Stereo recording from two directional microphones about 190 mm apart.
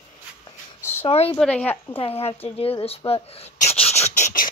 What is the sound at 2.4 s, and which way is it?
Rodents, 30° left (ahead or behind).